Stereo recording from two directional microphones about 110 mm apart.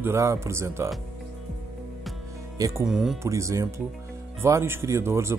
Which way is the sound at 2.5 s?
30° right (ahead or behind).